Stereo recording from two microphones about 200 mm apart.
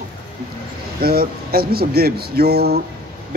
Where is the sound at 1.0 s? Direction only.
50° right (ahead or behind).